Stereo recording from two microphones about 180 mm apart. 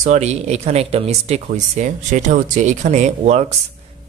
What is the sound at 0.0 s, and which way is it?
A man's voice, 40° right (ahead or behind).